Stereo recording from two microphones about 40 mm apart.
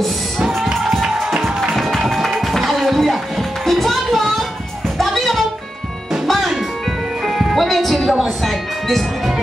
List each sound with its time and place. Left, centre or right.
1.0 s music: centre
2.0 s music: centre
7.5 s music: centre